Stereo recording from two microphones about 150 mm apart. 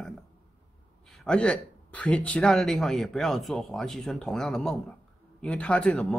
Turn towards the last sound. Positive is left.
turn(degrees=5)  # may be behind; listen again after turning